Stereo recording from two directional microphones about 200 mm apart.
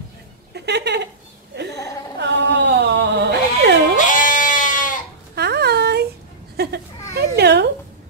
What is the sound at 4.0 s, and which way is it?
Goat, 40° left (ahead or behind).